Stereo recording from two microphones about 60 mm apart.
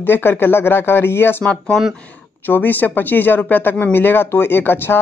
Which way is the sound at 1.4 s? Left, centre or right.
Centre.